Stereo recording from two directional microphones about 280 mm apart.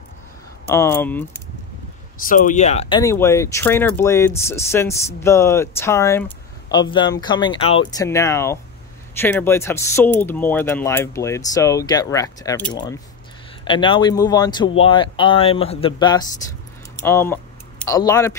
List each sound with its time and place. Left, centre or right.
0.7 s speech: centre
2.2 s speech: left
3.0 s speech: centre